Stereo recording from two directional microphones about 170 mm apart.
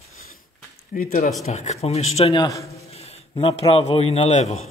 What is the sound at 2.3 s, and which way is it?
Speech, 20° left (ahead or behind).